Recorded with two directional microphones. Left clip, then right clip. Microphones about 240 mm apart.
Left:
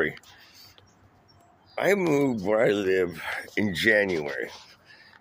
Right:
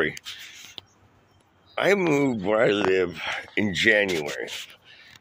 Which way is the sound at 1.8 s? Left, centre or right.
Centre.